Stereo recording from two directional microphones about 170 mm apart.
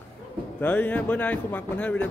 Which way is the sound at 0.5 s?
10° left (ahead or behind).